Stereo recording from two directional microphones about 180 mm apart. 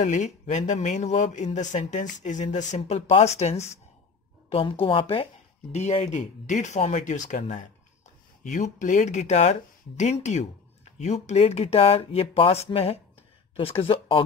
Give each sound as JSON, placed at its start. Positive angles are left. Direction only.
{"t": 0.0, "sound": "speech", "side_deg": 40}